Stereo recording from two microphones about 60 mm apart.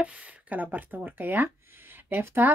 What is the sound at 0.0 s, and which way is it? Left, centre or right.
A woman's voice, right.